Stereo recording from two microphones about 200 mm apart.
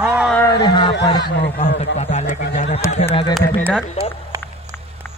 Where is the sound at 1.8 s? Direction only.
35° left (ahead or behind).